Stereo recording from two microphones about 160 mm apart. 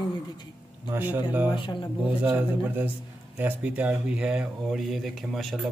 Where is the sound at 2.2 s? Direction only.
10° right (ahead or behind).